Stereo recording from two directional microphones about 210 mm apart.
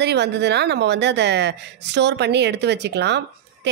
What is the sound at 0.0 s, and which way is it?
Speech, 55° right (ahead or behind).